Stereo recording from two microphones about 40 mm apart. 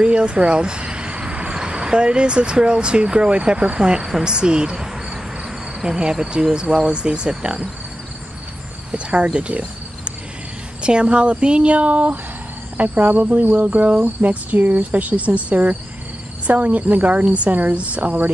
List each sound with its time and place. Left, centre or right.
0.0 s vehicle: right
1.5 s speech: right
9.2 s cricket: right
10.8 s speech: right